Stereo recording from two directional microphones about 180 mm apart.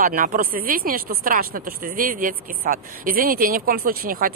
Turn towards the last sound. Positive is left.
turn(degrees=-55)  # may be behind; listen again after turning